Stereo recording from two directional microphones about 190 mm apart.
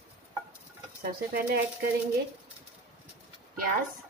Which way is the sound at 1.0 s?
50° right (ahead or behind).